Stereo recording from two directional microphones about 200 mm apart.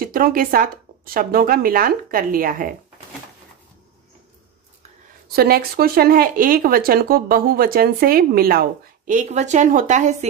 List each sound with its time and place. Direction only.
0.0 s speech: 45° right (ahead or behind)
5.3 s speech: 50° right (ahead or behind)